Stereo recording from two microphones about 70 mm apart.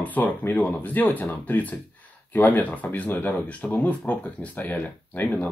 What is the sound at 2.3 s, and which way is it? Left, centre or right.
Speech, left.